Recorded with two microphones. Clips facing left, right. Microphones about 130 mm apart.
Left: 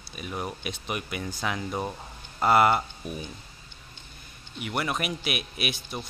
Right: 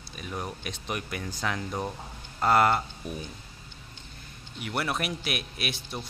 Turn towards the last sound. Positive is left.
turn(degrees=5)  # may be behind; listen again after turning